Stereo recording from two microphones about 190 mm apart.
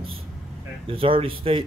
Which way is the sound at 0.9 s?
30° right (ahead or behind).